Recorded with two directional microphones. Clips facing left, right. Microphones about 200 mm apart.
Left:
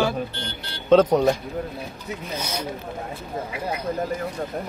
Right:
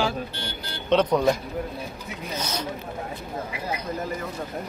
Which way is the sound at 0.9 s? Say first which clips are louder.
Left 5 dB; 45° left (ahead or behind).